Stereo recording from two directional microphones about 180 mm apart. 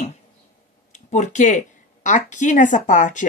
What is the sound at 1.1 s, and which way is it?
A woman's voice, 40° left (ahead or behind).